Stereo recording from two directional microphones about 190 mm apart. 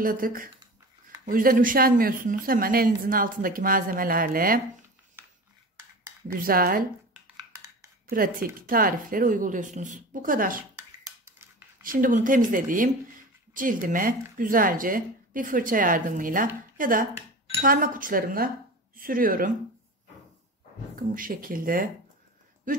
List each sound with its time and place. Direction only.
0.0 s a woman's voice: 50° right (ahead or behind)
6.2 s a woman's voice: 50° right (ahead or behind)
8.1 s a woman's voice: 50° right (ahead or behind)
11.8 s a woman's voice: 45° right (ahead or behind)
20.9 s a woman's voice: 45° right (ahead or behind)